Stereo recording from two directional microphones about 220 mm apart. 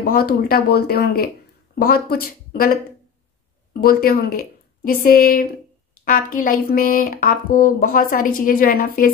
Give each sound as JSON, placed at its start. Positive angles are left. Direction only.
{"t": 0.0, "sound": "speech", "side_deg": 45}
{"t": 3.8, "sound": "speech", "side_deg": 40}